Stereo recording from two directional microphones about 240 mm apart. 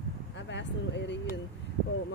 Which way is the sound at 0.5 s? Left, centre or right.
Left.